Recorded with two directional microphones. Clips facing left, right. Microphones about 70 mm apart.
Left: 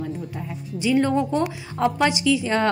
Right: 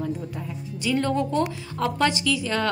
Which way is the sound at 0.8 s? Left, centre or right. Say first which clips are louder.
Left 4 dB; centre.